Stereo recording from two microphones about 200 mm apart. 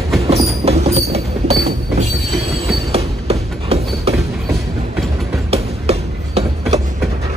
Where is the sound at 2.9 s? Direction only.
30° right (ahead or behind).